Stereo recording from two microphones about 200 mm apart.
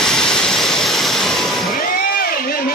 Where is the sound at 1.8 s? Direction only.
45° left (ahead or behind).